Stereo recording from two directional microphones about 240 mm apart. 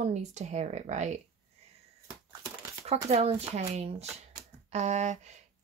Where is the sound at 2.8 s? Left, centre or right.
Right.